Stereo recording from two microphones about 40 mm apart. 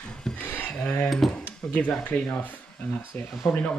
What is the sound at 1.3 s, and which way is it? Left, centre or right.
Speech, left.